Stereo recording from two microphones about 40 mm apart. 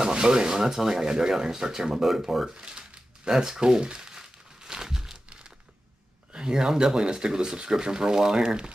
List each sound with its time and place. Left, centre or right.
0.0 s speech: right
4.6 s crumpling: centre
6.3 s speech: right